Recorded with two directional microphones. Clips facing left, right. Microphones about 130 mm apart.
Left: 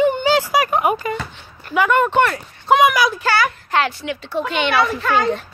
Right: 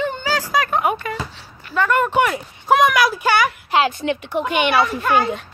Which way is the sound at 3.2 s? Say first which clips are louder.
Right 1 dB; 15° right (ahead or behind).